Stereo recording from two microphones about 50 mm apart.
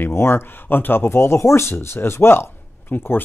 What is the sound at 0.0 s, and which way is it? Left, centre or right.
Speech, left.